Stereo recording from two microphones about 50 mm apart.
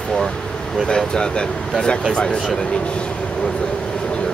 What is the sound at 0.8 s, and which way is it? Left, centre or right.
Speech, centre.